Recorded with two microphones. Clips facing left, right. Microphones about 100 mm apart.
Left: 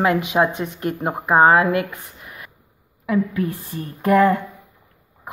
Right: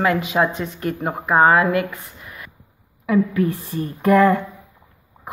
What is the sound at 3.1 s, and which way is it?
Speech, 5° left (ahead or behind).